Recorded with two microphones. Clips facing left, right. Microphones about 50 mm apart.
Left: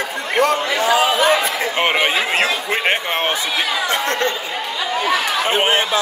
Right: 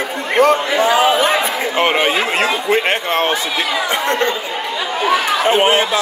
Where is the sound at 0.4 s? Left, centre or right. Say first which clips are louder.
Right 4 dB; right.